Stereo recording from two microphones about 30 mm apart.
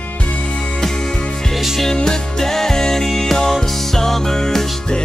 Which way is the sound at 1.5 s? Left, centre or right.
Centre.